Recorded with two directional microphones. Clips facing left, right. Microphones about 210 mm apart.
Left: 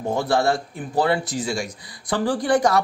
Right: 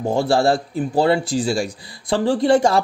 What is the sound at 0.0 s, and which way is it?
A man's voice, 30° right (ahead or behind).